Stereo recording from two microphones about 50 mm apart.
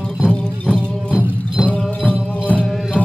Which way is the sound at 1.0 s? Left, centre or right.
Right.